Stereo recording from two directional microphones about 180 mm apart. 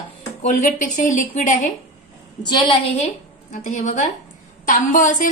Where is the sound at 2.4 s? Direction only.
25° left (ahead or behind).